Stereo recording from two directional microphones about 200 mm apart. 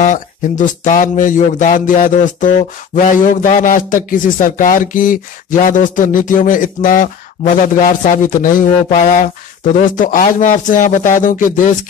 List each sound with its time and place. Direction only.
0.0 s speech: 40° left (ahead or behind)